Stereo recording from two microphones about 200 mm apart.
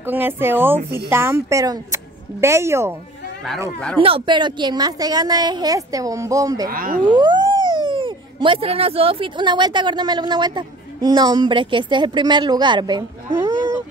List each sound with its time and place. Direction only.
0.0 s speech: 10° right (ahead or behind)
4.0 s a woman's voice: 25° right (ahead or behind)
6.7 s speech: 45° right (ahead or behind)
7.1 s speech: 20° right (ahead or behind)